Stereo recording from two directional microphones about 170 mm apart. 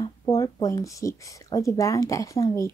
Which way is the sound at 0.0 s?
20° left (ahead or behind).